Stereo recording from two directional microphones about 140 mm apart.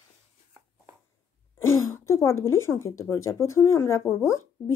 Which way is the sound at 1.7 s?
20° left (ahead or behind).